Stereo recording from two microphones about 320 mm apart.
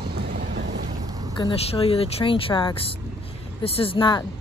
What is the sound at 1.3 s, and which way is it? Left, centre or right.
Speech, centre.